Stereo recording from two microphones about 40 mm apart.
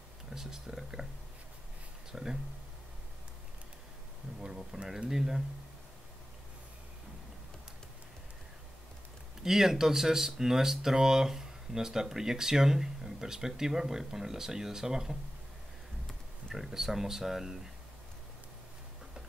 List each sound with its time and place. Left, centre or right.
0.3 s a sound: centre
2.1 s speech: centre
4.4 s a sound: right
5.1 s speech: centre
9.4 s speech: centre
16.5 s speech: centre